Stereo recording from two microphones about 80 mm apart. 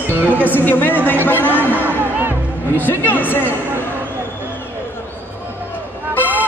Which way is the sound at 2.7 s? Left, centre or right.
Left.